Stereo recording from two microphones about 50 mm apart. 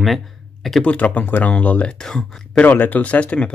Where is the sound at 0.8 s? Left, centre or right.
Left.